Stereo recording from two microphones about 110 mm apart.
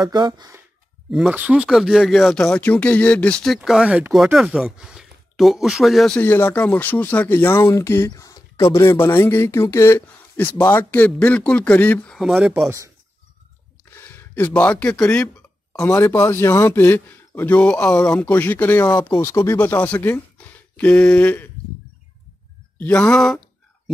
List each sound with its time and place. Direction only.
0.0 s speech: 40° right (ahead or behind)
1.3 s speech: 10° right (ahead or behind); by 3.5 s 10° left (ahead or behind)
3.5 s speech: 5° right (ahead or behind)
6.2 s a man's voice: 20° left (ahead or behind)
8.1 s a sound: 35° left (ahead or behind)
8.7 s speech: 25° left (ahead or behind)
12.6 s speech: 30° right (ahead or behind)
13.8 s speech: 20° left (ahead or behind)
15.8 s a man's voice: 25° left (ahead or behind)
18.9 s speech: 40° left (ahead or behind)
19.2 s a man's voice: 25° left (ahead or behind)
19.6 s speech: 15° left (ahead or behind)
22.8 s speech: 15° left (ahead or behind)